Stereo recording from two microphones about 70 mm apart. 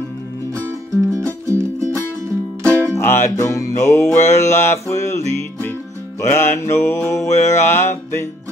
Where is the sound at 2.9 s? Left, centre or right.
Left.